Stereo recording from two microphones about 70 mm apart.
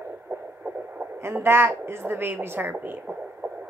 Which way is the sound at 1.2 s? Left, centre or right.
Right.